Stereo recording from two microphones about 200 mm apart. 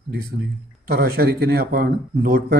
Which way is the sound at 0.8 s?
50° right (ahead or behind).